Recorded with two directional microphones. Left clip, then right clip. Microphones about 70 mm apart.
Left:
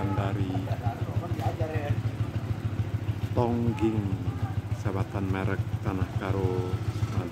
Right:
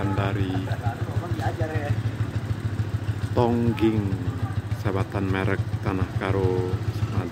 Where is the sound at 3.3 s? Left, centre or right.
Right.